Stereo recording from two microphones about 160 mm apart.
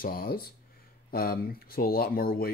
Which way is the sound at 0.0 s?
65° left (ahead or behind).